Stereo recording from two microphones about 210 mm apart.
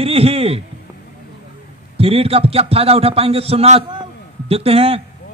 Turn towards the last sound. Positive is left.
turn(degrees=-30)  # may be behind; listen again after turning